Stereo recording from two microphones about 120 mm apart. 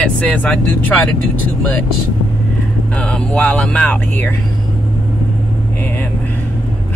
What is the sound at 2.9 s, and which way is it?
Speech, 10° left (ahead or behind).